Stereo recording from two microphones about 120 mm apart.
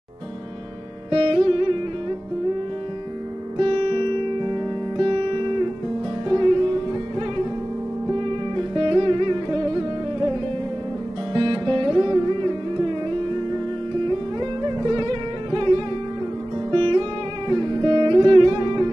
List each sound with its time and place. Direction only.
1.1 s music: 45° right (ahead or behind)
3.5 s music: 45° right (ahead or behind)
8.1 s music: 45° right (ahead or behind)
11.3 s music: 40° right (ahead or behind)